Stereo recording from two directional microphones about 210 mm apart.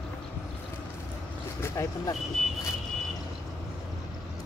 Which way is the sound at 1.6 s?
15° left (ahead or behind).